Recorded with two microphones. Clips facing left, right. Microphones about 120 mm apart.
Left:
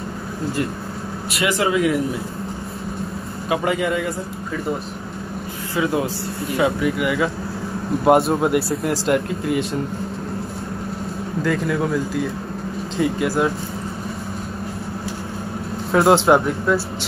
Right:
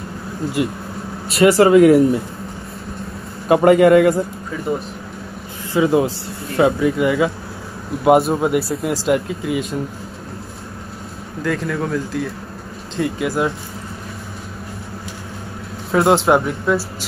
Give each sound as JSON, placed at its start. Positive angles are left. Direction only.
{"t": 0.6, "sound": "speech", "side_deg": -15}
{"t": 1.3, "sound": "speech", "side_deg": -35}
{"t": 1.7, "sound": "speech", "side_deg": -50}
{"t": 3.4, "sound": "a man's voice", "side_deg": -50}
{"t": 5.8, "sound": "speech", "side_deg": -25}
{"t": 8.0, "sound": "speech", "side_deg": 0}
{"t": 11.4, "sound": "speech", "side_deg": 5}
{"t": 15.9, "sound": "speech", "side_deg": 0}